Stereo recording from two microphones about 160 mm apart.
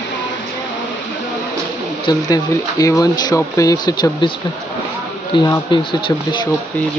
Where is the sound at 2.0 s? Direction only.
25° left (ahead or behind).